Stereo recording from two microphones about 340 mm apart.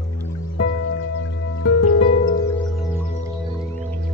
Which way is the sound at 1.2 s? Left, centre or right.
Left.